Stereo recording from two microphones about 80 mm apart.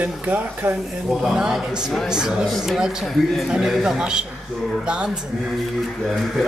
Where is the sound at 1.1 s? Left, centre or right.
Centre.